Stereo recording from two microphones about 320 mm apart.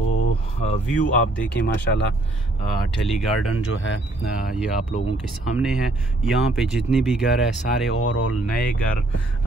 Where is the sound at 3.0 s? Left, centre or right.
Centre.